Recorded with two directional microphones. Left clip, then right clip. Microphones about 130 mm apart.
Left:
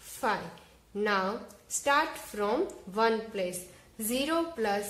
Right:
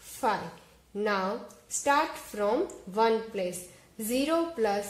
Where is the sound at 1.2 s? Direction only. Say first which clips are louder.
Right 1 dB; 20° right (ahead or behind).